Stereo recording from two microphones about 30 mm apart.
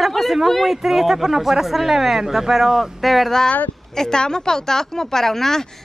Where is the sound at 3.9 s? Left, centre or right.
Left.